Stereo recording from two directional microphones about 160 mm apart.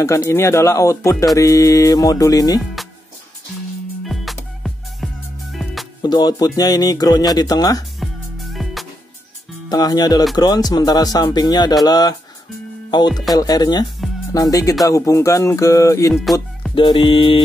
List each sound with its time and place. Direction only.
0.0 s speech: 15° left (ahead or behind)
4.0 s music: centre (ahead or behind)
6.0 s speech: 25° left (ahead or behind)
8.0 s music: centre (ahead or behind)
9.7 s speech: 25° left (ahead or behind)
16.7 s music: 30° left (ahead or behind)